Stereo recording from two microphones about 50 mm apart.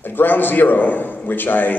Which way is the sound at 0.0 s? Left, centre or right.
Left.